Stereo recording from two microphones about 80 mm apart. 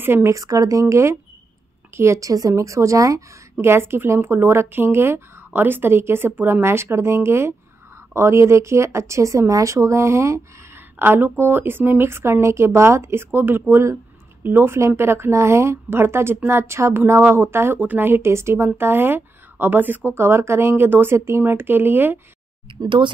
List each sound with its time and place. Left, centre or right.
0.0 s speech: right
0.3 s speech: right
3.6 s speech: right
11.0 s speech: right
22.8 s speech: right